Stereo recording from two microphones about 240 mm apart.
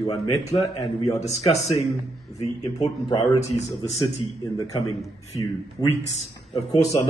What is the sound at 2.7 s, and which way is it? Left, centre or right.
A man's voice, centre.